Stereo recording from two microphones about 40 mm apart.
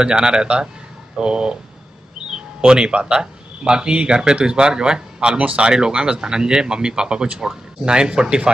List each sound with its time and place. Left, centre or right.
0.0 s speech: right
2.6 s speech: right